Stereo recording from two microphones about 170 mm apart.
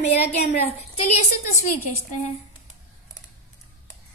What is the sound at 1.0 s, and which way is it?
Speech, 40° left (ahead or behind).